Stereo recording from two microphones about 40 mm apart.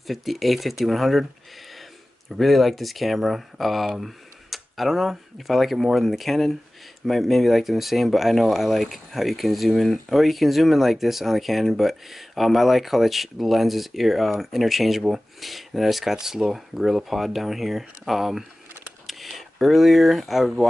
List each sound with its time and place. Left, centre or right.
0.0 s speech: centre
2.2 s speech: centre